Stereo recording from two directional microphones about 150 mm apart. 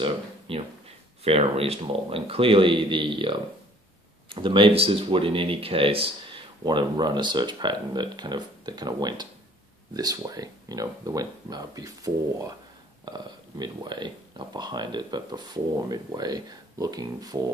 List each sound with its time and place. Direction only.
0.0 s speech: 40° right (ahead or behind)